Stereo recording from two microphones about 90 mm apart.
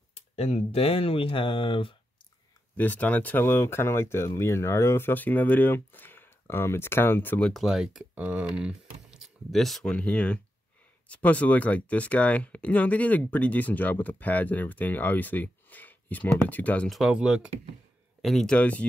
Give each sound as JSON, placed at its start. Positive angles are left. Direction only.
{"t": 0.7, "sound": "speech", "side_deg": 90}
{"t": 2.7, "sound": "speech", "side_deg": 20}
{"t": 7.4, "sound": "speech", "side_deg": 0}
{"t": 8.1, "sound": "speech", "side_deg": -15}
{"t": 8.5, "sound": "typing", "side_deg": -10}
{"t": 9.5, "sound": "speech", "side_deg": 0}
{"t": 16.9, "sound": "speech", "side_deg": -5}
{"t": 18.2, "sound": "speech", "side_deg": 5}
{"t": 18.6, "sound": "speech", "side_deg": 15}